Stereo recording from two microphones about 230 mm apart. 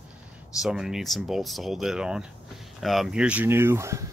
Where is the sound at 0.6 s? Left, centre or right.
Centre.